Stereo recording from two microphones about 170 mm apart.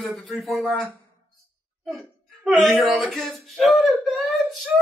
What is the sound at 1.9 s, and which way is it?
A man's voice, centre (ahead or behind).